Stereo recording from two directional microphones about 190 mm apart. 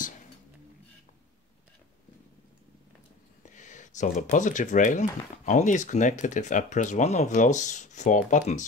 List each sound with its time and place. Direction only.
3.4 s speech: 40° left (ahead or behind)